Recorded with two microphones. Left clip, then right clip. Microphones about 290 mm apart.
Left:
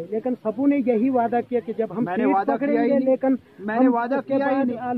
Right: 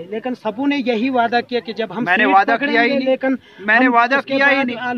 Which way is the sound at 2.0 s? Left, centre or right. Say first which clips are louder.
Right 10 dB; right.